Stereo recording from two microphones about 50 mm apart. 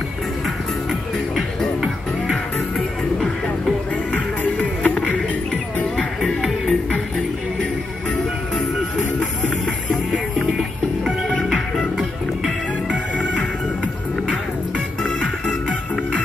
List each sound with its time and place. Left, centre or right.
4.1 s music: left
6.4 s music: centre